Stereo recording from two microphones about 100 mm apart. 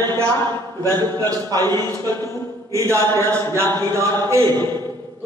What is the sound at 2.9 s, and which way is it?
Music, 25° left (ahead or behind).